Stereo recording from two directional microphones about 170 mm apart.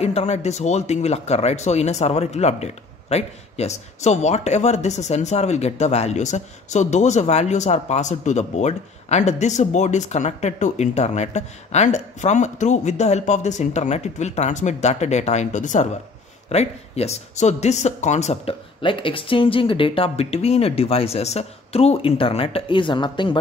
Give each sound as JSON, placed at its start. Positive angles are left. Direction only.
{"t": 0.0, "sound": "speech", "side_deg": 40}